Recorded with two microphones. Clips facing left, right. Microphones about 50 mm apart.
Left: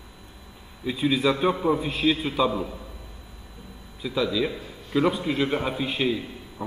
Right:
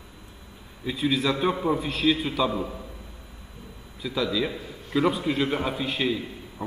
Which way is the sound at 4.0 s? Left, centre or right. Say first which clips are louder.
Left 1 dB; centre.